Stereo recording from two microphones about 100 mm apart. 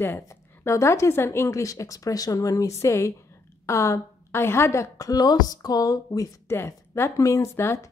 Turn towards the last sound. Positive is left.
turn(degrees=25)  # may be behind; listen again after turning